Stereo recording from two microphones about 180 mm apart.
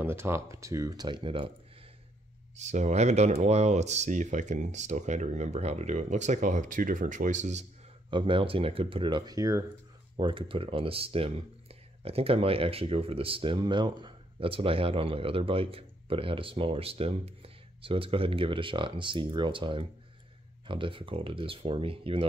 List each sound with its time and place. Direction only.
0.0 s speech: 15° right (ahead or behind)
2.5 s speech: 40° right (ahead or behind)
8.1 s speech: 25° right (ahead or behind)